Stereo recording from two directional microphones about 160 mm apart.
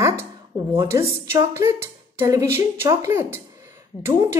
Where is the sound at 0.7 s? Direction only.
15° right (ahead or behind).